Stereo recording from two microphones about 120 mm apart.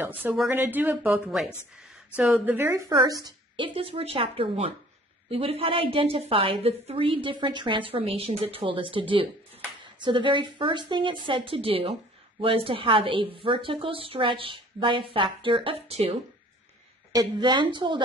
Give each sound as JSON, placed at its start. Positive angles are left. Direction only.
{"t": 0.0, "sound": "speech", "side_deg": -15}
{"t": 2.9, "sound": "a woman's voice", "side_deg": -35}
{"t": 17.1, "sound": "a woman's voice", "side_deg": -35}